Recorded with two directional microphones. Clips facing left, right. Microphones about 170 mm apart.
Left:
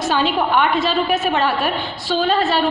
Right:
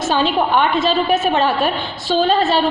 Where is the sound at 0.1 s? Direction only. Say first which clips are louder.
Right 2 dB; 30° right (ahead or behind).